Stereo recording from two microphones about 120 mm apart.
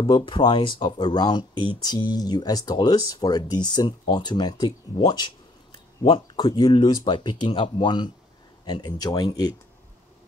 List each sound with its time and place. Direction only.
0.0 s speech: 40° left (ahead or behind)